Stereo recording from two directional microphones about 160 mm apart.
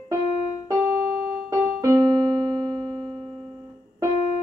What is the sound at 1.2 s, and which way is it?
Keyboard, 20° right (ahead or behind).